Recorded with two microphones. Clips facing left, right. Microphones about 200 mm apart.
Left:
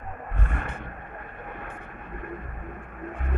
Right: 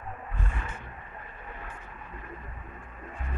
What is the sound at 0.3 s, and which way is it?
Roaring cats, 60° left (ahead or behind).